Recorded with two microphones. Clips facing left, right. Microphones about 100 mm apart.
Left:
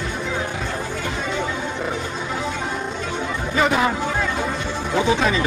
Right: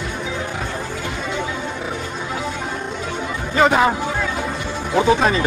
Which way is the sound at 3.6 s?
55° right (ahead or behind).